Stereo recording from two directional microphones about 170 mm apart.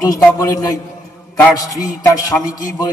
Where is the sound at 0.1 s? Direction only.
20° left (ahead or behind).